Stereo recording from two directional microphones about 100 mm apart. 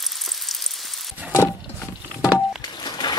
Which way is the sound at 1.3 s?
25° left (ahead or behind).